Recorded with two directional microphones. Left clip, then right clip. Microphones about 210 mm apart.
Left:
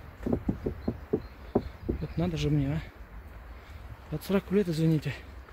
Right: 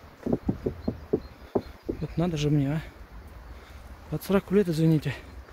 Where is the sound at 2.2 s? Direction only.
10° right (ahead or behind).